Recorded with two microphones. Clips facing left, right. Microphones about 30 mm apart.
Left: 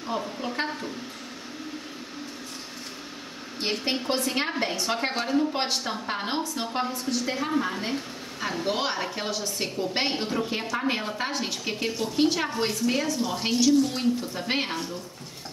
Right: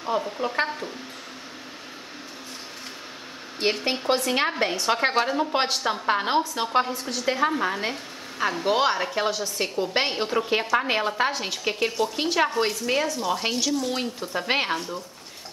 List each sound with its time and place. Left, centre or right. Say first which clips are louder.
0.0 s speech: right 4 dB; centre
3.7 s a woman's voice: left 1 dB; centre
4.3 s speech: right 4 dB; centre
6.9 s a woman's voice: left 1 dB; centre
7.2 s a woman's voice: right 7 dB; right; by 10.3 s centre
10.5 s speech: right 5 dB; right
11.3 s a woman's voice: even; centre
11.6 s speech: right 4 dB; centre
13.0 s a woman's voice: right 2 dB; centre
13.9 s speech: left 1 dB; centre